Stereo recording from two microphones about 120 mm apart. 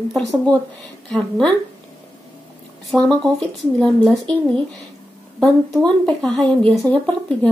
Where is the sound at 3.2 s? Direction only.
5° left (ahead or behind).